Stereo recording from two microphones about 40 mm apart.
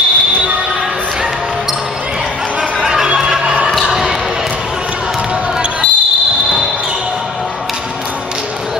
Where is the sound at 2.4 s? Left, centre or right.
Right.